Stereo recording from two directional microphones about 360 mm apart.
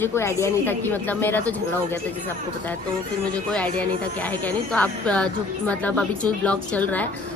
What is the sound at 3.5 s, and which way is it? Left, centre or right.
A woman's voice, centre.